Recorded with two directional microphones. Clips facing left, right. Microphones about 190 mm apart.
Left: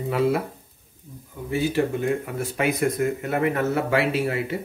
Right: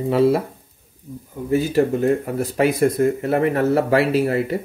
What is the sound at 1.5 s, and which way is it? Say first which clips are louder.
A man's voice: right 5 dB; 40° right (ahead or behind).